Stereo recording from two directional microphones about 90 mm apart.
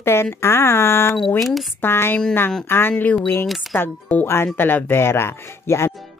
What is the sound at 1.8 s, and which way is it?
Speech, 25° left (ahead or behind).